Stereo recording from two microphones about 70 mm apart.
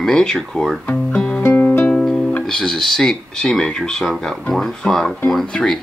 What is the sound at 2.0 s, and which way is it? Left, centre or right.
Music, centre.